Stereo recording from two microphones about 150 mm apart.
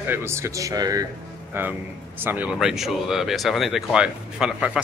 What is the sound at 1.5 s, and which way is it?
A man's voice, 15° right (ahead or behind).